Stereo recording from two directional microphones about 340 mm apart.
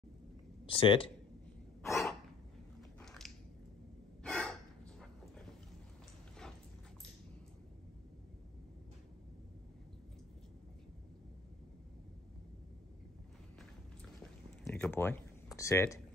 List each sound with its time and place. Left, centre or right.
0.7 s speech: centre
1.9 s cough: centre
3.0 s biting: centre
4.2 s gasp: centre
14.6 s a sound: centre